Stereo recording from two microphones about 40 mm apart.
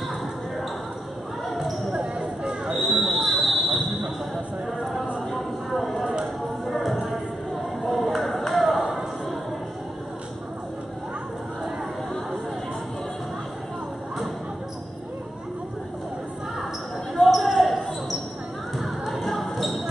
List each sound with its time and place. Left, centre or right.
1.5 s basketball bounce: centre
5.9 s a sound: centre
6.6 s music: centre
8.0 s music: centre
17.1 s basketball bounce: centre